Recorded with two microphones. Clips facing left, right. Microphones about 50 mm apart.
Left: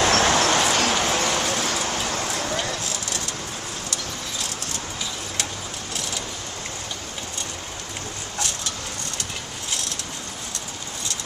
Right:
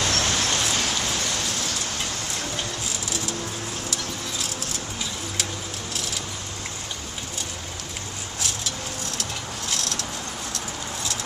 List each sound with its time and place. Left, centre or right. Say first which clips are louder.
0.1 s vehicle: left 6 dB; left